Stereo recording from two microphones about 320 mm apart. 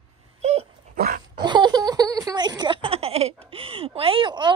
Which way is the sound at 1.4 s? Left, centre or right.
Centre.